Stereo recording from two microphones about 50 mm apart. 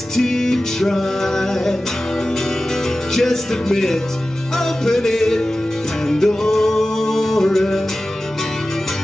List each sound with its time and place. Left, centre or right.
0.1 s music: centre
3.2 s music: centre